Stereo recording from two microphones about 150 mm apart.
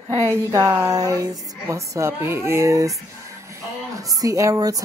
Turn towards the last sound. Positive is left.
turn(degrees=-20)  # may be behind; listen again after turning